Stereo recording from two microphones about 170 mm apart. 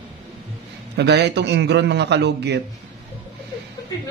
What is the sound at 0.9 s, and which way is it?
A man's voice, 80° right.